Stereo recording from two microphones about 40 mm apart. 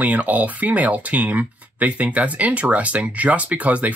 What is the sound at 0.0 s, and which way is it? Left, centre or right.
Speech, right.